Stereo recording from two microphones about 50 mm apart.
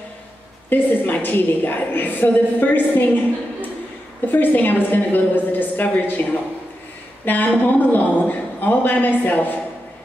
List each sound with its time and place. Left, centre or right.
0.7 s a woman's voice: left
4.3 s a woman's voice: left
7.2 s a woman's voice: left